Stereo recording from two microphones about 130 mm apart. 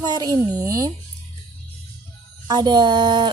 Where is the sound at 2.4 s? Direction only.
35° right (ahead or behind).